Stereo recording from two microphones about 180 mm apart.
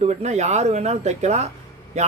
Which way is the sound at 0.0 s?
40° right (ahead or behind).